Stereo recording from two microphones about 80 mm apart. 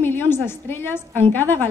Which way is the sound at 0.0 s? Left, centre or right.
Left.